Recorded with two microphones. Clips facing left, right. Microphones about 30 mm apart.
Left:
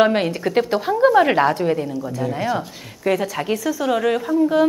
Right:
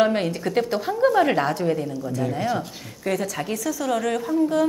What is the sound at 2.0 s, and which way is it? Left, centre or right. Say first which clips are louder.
A woman's voice: left 2 dB; centre.